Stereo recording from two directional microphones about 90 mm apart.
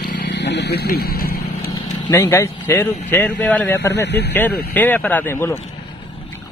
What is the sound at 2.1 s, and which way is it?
Speech, 35° left (ahead or behind).